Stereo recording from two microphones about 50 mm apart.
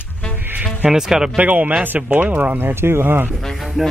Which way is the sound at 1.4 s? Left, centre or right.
Right.